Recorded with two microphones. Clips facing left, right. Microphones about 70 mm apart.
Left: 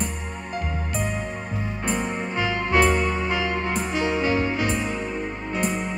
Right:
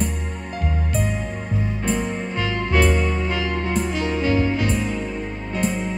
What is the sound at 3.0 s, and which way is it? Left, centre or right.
Music, centre.